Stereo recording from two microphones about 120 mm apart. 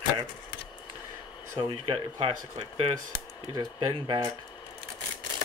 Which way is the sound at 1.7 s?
50° right (ahead or behind).